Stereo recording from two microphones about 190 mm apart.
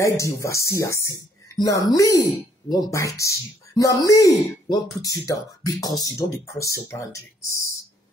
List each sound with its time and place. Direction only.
0.0 s speech: 15° left (ahead or behind)